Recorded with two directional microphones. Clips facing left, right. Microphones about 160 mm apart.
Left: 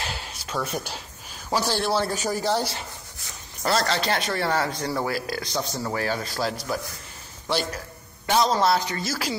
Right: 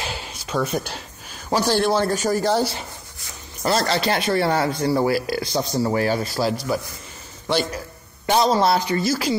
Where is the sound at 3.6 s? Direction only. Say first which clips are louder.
Right 3 dB; 15° right (ahead or behind).